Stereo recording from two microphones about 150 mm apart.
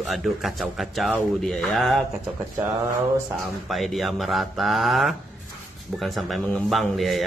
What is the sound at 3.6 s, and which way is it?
A man's voice, centre (ahead or behind).